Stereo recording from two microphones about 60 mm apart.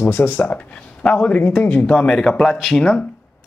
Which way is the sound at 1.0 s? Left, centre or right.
Left.